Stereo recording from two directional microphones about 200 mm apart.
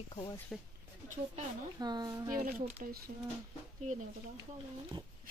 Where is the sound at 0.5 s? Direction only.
5° left (ahead or behind).